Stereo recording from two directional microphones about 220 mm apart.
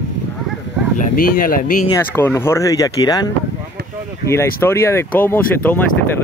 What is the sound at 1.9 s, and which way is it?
Speech, 10° left (ahead or behind).